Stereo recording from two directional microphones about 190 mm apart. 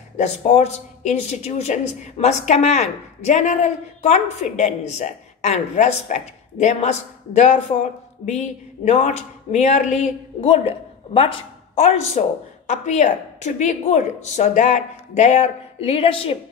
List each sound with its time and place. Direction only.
0.2 s speech: 35° left (ahead or behind)